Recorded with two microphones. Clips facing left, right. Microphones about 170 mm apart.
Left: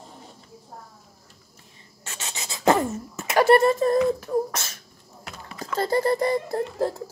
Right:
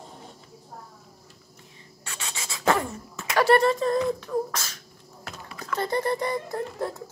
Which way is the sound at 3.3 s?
25° left (ahead or behind).